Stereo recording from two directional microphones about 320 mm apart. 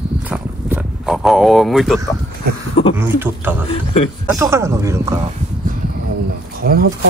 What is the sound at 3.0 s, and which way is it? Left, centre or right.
Speech, centre.